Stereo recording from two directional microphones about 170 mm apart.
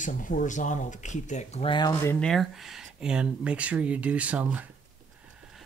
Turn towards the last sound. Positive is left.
turn(degrees=-10)  # may be behind; listen again after turning